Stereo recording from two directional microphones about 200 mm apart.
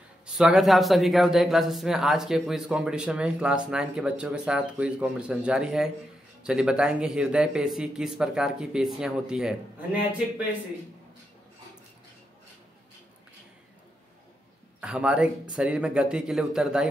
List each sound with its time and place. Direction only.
0.4 s speech: centre (ahead or behind)
14.8 s speech: 5° right (ahead or behind)